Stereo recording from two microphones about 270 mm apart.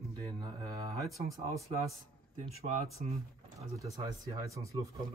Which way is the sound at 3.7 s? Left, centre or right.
Centre.